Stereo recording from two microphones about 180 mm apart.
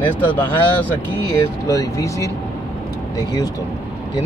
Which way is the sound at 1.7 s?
20° left (ahead or behind).